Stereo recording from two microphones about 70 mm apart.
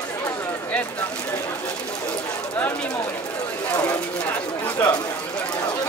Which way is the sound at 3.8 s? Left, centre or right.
Left.